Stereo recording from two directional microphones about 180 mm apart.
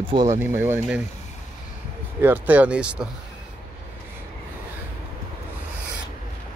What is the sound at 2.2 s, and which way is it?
Speech, 10° right (ahead or behind).